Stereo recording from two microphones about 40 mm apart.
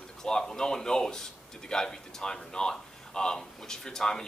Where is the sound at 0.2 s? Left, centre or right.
Centre.